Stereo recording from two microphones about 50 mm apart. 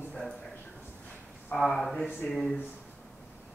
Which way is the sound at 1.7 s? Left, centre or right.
Centre.